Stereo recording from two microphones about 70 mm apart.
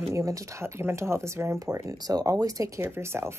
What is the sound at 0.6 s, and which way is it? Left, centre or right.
A woman's voice, right.